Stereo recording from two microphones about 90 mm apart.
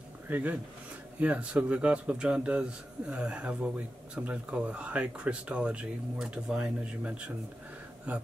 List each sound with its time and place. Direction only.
0.3 s speech: 15° right (ahead or behind)